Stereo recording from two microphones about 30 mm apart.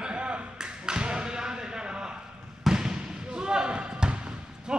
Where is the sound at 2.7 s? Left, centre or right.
Right.